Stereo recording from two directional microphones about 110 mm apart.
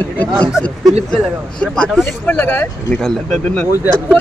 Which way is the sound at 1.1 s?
10° left (ahead or behind).